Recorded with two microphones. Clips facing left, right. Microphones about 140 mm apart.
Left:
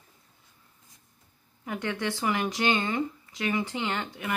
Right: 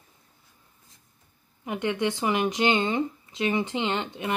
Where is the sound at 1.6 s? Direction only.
20° right (ahead or behind).